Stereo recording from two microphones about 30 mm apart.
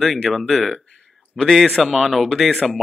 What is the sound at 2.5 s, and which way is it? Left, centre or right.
Speech, centre.